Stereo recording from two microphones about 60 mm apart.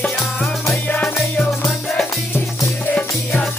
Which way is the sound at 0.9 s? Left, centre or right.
Left.